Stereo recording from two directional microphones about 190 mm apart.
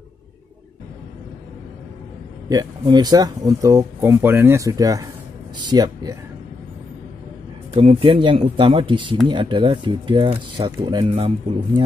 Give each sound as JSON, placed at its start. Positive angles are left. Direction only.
{"t": 2.5, "sound": "speech", "side_deg": -20}
{"t": 7.7, "sound": "speech", "side_deg": -35}